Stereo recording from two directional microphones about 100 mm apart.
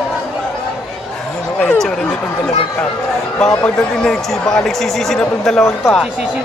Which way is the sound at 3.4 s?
5° left (ahead or behind).